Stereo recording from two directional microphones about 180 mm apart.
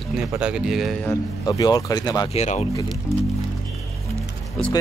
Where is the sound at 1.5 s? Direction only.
20° left (ahead or behind).